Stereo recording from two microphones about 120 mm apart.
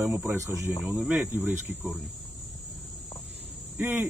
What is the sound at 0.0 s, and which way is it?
Speech, 20° right (ahead or behind).